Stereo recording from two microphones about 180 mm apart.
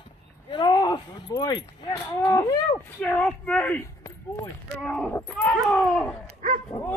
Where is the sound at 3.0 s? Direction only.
5° left (ahead or behind).